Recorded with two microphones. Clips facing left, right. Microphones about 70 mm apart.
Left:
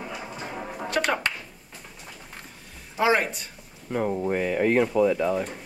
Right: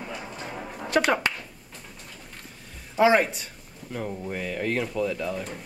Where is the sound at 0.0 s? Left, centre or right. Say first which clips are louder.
Left 1 dB; centre.